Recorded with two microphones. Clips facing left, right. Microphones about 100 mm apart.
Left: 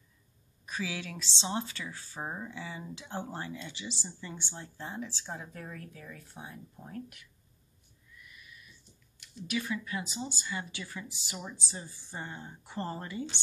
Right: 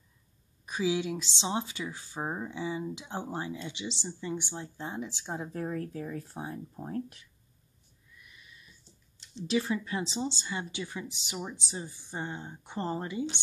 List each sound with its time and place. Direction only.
0.7 s speech: 20° right (ahead or behind)